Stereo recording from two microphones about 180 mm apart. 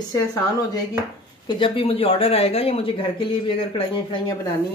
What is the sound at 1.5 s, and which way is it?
Speech, 30° left (ahead or behind).